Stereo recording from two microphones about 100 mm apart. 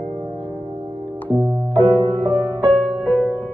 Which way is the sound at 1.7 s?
20° left (ahead or behind).